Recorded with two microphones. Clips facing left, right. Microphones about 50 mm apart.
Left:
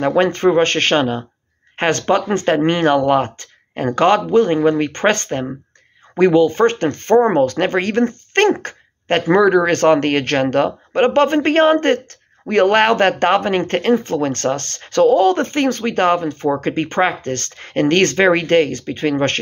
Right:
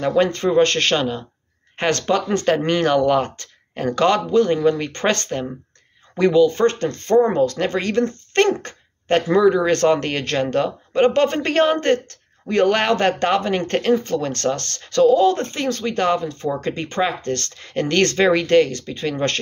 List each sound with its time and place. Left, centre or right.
0.0 s speech: left